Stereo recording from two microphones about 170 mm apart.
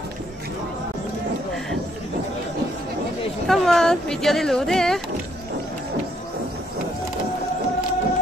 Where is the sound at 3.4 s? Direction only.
Centre (ahead or behind).